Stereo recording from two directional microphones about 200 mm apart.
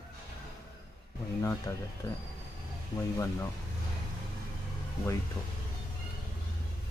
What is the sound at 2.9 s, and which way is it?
Speech, 15° left (ahead or behind).